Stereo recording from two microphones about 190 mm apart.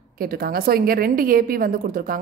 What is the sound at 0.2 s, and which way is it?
A woman's voice, 50° right (ahead or behind).